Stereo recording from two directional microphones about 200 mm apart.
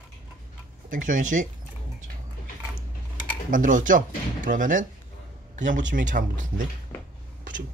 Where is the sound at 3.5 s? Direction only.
40° right (ahead or behind).